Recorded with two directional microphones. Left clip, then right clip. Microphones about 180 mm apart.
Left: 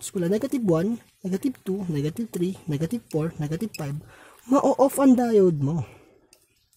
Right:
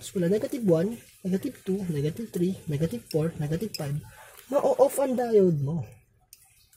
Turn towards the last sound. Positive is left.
turn(degrees=45)  # may be behind; listen again after turning